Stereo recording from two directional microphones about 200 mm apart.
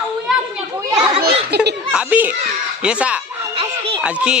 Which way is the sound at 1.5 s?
55° right (ahead or behind).